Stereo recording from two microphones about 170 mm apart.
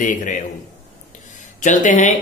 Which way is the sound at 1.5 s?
45° left (ahead or behind).